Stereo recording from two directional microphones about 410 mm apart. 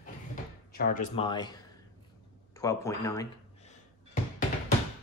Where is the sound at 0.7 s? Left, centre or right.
Left.